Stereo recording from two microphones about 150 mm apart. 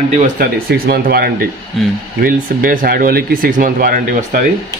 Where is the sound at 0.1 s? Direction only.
60° right (ahead or behind); by 1.3 s 90° right.